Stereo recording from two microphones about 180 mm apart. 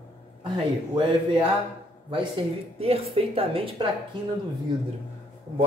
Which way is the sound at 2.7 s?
35° right (ahead or behind).